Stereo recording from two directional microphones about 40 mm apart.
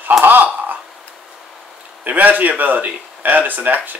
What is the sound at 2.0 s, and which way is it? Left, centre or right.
Speech, right.